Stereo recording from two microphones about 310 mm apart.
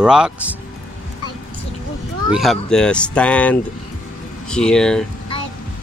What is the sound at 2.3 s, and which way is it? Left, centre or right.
Speech, centre.